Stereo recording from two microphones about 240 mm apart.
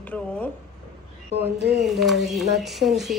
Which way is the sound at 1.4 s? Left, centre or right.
Right.